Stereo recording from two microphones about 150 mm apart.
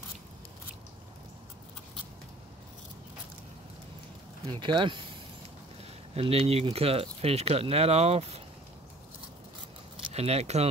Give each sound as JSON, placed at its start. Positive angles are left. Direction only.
{"t": 4.5, "sound": "speech", "side_deg": -30}
{"t": 6.1, "sound": "speech", "side_deg": -40}
{"t": 10.1, "sound": "speech", "side_deg": -45}